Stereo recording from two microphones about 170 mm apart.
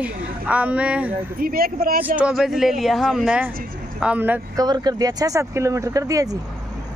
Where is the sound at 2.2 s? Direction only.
5° right (ahead or behind).